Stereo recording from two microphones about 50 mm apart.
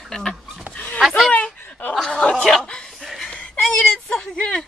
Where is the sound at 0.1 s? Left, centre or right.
Centre.